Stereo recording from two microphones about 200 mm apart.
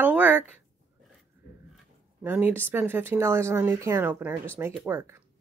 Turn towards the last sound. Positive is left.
turn(degrees=-15)  # may be behind; listen again after turning